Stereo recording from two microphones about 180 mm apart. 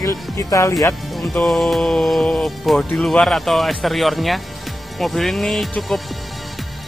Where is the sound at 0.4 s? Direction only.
15° left (ahead or behind).